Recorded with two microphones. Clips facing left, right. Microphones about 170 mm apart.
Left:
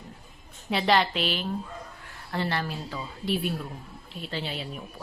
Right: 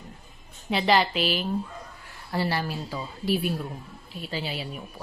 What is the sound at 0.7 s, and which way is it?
A woman's voice, centre (ahead or behind).